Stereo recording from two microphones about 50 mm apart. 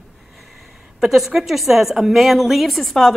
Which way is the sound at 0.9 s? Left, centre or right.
Centre.